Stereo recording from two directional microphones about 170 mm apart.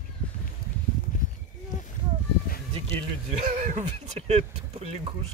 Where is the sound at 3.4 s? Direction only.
45° right (ahead or behind).